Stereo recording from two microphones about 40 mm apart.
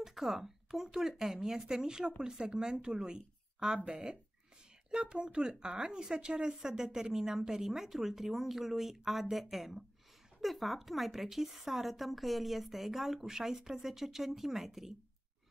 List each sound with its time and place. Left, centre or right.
0.0 s a woman's voice: centre